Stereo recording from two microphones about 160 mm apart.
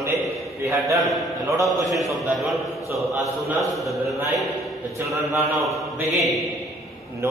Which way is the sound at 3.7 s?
Centre (ahead or behind).